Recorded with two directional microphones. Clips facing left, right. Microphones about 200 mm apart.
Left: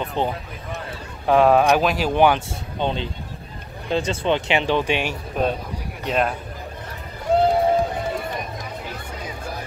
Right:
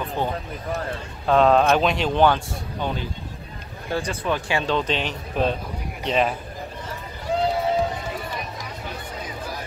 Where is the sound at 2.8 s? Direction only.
25° left (ahead or behind); by 6.3 s centre (ahead or behind).